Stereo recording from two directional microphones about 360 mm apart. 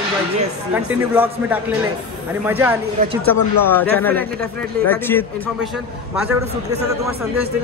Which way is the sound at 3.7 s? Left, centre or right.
Centre.